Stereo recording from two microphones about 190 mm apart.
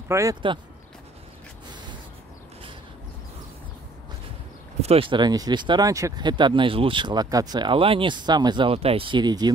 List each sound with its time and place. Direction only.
0.1 s speech: 15° right (ahead or behind)
4.8 s speech: 30° right (ahead or behind)